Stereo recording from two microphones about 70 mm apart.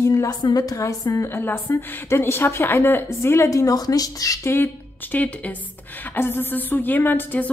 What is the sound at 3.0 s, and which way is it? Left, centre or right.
A woman's voice, left.